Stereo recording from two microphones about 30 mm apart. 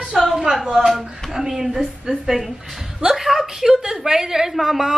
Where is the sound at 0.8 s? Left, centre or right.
Right.